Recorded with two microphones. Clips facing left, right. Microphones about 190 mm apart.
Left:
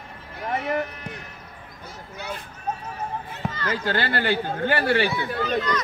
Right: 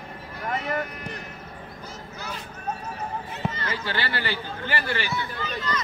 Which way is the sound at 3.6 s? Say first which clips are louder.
Left 5 dB; 50° left (ahead or behind).